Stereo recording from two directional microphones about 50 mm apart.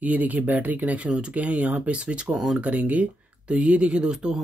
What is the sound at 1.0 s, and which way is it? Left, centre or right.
Speech, right.